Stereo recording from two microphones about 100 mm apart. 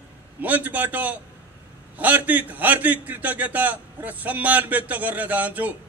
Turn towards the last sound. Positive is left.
turn(degrees=-15)  # may be behind; listen again after turning